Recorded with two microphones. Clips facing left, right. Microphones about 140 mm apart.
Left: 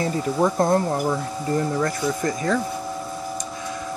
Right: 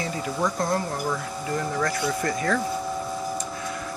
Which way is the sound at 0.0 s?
25° left (ahead or behind).